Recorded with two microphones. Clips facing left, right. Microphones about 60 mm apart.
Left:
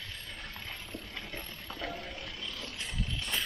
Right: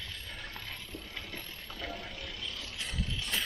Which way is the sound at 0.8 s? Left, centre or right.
Left.